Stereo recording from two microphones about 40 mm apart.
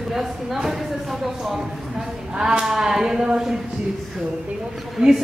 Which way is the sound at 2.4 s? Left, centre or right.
Centre.